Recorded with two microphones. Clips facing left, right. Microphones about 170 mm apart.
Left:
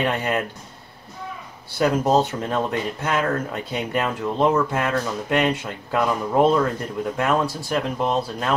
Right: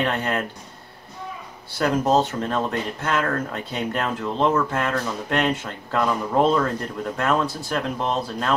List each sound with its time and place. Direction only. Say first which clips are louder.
0.0 s speech: left 1 dB; 10° left (ahead or behind)
1.8 s speech: left 1 dB; 10° left (ahead or behind)